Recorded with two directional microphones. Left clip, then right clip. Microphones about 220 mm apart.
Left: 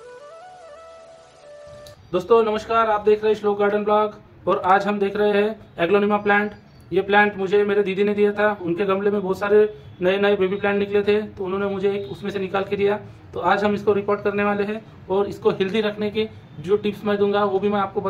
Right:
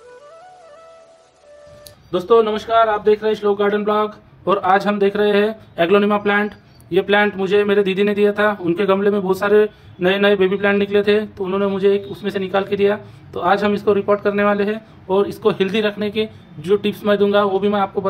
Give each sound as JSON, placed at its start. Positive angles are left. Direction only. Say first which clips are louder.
{"t": 2.0, "sound": "a man's voice", "louder": "right 3 dB", "side_deg": -25}